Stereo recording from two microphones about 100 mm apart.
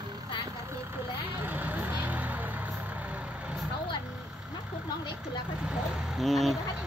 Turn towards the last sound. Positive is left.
turn(degrees=0)  # may be behind; listen again after turning